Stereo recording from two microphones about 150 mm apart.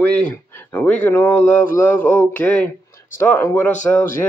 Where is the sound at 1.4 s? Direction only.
55° left (ahead or behind).